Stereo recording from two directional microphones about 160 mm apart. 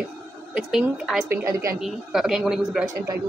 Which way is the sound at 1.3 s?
20° right (ahead or behind).